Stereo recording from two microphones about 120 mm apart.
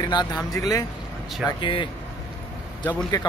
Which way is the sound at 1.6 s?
40° left (ahead or behind).